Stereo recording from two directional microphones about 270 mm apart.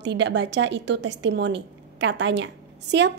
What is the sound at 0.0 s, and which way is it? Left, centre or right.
A woman's voice, right.